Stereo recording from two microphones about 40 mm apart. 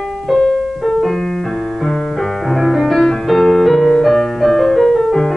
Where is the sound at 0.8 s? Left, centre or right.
Centre.